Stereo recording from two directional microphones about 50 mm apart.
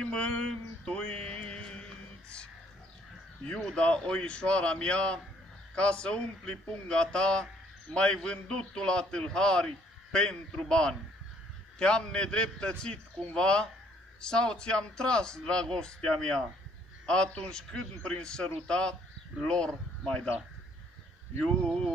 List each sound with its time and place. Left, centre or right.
0.0 s music: left
3.7 s a man's voice: left
21.6 s speech: centre